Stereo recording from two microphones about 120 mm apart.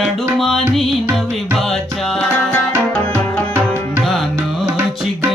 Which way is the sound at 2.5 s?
15° left (ahead or behind).